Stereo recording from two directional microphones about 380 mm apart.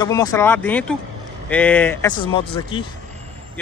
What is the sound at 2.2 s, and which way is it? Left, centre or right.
Speech, centre.